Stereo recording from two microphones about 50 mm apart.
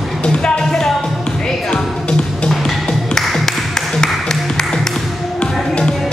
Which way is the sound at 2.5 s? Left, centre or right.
Centre.